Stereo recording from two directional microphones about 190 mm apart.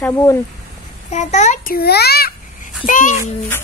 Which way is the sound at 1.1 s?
40° left (ahead or behind).